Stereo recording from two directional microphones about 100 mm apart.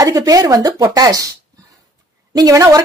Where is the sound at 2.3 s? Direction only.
40° right (ahead or behind).